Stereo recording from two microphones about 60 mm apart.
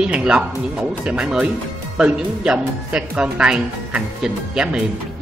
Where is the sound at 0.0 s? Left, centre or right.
Centre.